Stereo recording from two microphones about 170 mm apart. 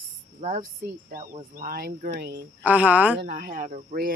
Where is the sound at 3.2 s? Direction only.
60° right (ahead or behind).